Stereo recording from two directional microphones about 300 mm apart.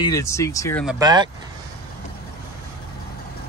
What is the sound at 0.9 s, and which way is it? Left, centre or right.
Speech, centre.